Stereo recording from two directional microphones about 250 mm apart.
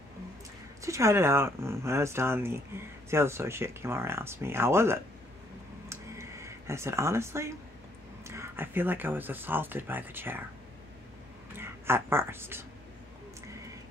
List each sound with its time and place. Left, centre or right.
0.8 s speech: centre
5.9 s a sound: centre
8.3 s speech: centre
11.5 s speech: centre